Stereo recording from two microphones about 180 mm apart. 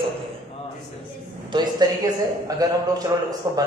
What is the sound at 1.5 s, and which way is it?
A man's voice, 25° right (ahead or behind).